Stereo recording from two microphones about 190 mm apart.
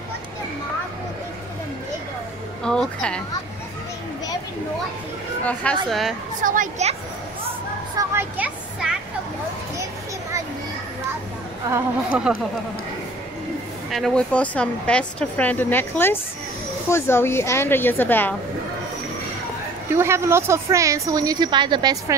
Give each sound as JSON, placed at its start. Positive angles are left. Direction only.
{"t": 2.6, "sound": "speech", "side_deg": 5}
{"t": 5.4, "sound": "speech", "side_deg": 5}
{"t": 6.4, "sound": "speech", "side_deg": -45}
{"t": 8.0, "sound": "a sound", "side_deg": -10}
{"t": 11.7, "sound": "speech", "side_deg": -5}
{"t": 13.8, "sound": "speech", "side_deg": 0}
{"t": 19.9, "sound": "a woman's voice", "side_deg": -15}